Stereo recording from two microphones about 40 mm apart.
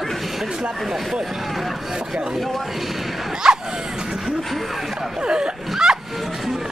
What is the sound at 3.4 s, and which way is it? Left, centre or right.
Dog, centre.